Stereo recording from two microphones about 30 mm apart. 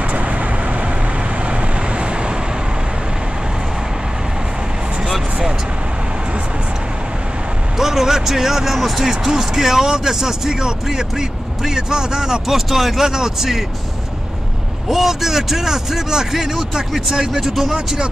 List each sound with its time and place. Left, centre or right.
0.0 s vehicle: right
7.7 s speech: centre
12.4 s speech: centre
13.0 s speech: centre
14.9 s speech: centre